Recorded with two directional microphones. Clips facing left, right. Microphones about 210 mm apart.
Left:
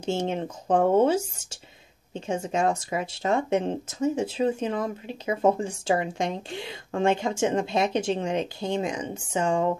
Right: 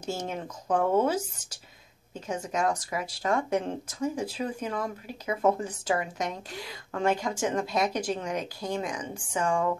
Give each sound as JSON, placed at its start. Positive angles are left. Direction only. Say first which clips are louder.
{"t": 0.3, "sound": "speech", "louder": "left 4 dB", "side_deg": 25}